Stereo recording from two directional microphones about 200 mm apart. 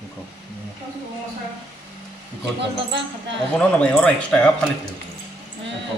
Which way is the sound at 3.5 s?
5° left (ahead or behind).